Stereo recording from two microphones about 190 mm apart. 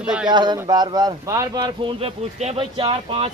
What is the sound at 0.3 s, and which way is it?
Speech, 25° right (ahead or behind).